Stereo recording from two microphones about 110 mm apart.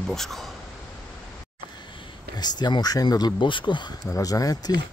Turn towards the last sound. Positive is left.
turn(degrees=35)  # may be behind; listen again after turning